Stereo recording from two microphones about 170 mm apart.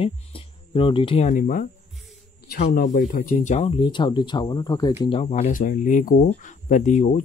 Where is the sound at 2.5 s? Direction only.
65° left (ahead or behind); by 4.9 s 25° left (ahead or behind).